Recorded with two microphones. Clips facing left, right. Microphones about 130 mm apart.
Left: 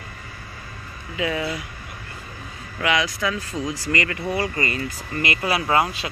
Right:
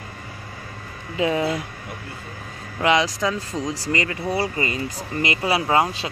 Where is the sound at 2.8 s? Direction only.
35° right (ahead or behind).